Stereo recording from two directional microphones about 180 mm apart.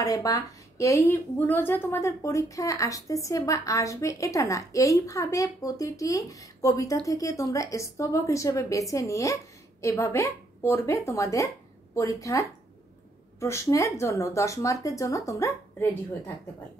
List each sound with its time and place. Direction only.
0.0 s a woman's voice: 20° left (ahead or behind)